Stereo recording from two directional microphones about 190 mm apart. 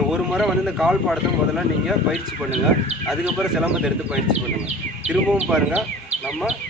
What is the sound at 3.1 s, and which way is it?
A man's voice, centre (ahead or behind).